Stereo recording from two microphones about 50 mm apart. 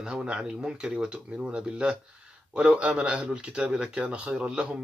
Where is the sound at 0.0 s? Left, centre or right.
Centre.